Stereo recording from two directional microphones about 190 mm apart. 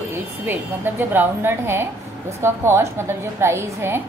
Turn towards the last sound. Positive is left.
turn(degrees=-15)  # may be behind; listen again after turning